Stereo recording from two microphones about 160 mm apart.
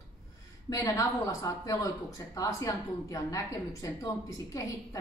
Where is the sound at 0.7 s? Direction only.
20° left (ahead or behind).